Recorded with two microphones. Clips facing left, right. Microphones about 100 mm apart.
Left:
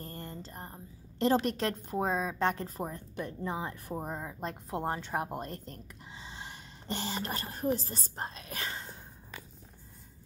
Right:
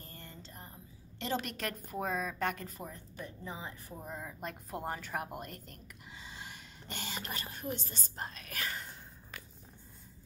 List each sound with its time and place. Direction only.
0.0 s a woman's voice: 40° left (ahead or behind)
2.8 s speech: 55° left (ahead or behind)
4.2 s a woman's voice: 30° left (ahead or behind)